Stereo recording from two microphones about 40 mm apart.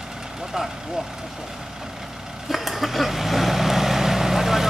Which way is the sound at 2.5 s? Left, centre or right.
Centre.